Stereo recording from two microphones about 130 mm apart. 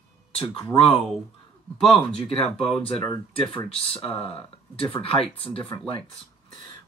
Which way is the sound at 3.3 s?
40° left (ahead or behind).